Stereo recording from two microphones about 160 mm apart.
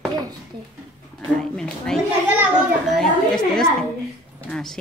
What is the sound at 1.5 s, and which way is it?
Speech, 5° left (ahead or behind).